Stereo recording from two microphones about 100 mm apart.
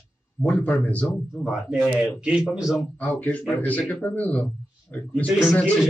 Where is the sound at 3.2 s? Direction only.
10° left (ahead or behind).